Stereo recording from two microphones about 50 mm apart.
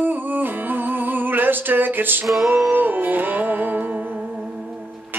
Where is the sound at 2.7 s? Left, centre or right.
Right.